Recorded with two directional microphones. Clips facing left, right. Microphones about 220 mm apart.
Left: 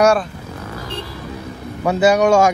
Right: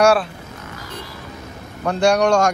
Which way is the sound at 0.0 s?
Centre (ahead or behind).